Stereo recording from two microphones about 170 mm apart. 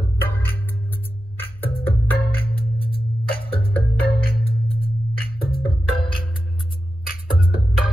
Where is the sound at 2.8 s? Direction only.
30° left (ahead or behind).